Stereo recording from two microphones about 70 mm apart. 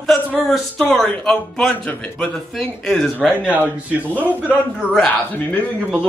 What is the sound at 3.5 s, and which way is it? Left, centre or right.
Speech, right.